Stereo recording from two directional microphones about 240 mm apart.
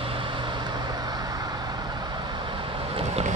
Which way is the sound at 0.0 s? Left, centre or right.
Right.